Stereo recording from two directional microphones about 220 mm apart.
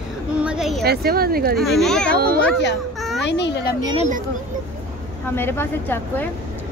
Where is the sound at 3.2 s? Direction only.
50° left (ahead or behind).